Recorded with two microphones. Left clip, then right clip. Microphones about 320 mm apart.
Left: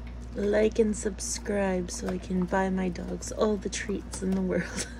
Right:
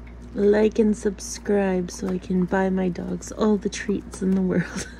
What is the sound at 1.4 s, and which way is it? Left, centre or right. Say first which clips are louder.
Speech: right 6 dB; right.